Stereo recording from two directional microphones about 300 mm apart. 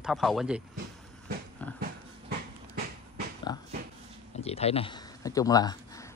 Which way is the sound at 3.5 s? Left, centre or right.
Centre.